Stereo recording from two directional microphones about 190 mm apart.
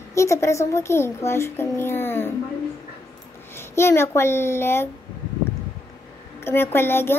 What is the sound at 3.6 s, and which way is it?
A child's voice, 15° left (ahead or behind).